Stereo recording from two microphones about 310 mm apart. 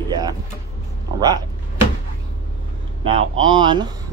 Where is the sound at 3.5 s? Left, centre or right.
Centre.